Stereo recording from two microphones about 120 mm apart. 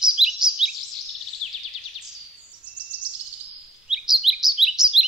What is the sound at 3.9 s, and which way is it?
Bird vocalization, centre (ahead or behind).